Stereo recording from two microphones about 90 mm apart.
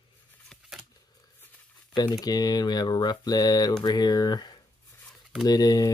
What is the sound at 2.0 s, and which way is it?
Speech, 45° left (ahead or behind).